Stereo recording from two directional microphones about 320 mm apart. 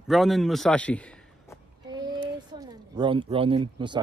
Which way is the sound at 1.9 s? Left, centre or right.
Centre.